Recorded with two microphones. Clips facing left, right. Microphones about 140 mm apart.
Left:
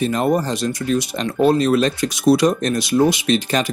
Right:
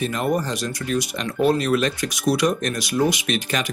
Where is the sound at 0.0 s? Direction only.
30° left (ahead or behind).